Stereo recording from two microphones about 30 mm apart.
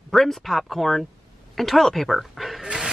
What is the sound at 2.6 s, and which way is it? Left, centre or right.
Dog, right.